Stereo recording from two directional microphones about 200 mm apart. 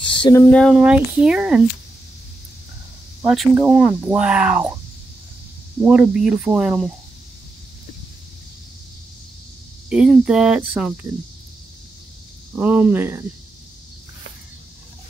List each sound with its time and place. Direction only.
0.0 s a sound: 25° left (ahead or behind)
0.4 s speech: 5° left (ahead or behind)
3.3 s speech: 5° right (ahead or behind)
5.9 s speech: 5° right (ahead or behind)
9.8 s speech: 5° right (ahead or behind)
12.5 s speech: 5° right (ahead or behind)